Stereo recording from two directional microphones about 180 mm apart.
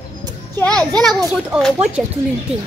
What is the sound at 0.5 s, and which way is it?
A child's voice, 5° left (ahead or behind).